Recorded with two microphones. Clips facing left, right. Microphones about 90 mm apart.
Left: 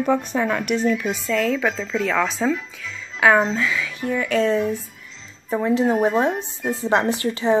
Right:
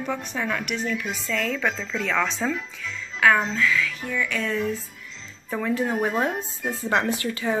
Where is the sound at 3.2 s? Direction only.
20° left (ahead or behind).